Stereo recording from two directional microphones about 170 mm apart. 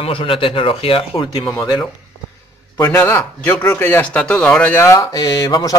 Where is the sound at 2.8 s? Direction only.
10° left (ahead or behind).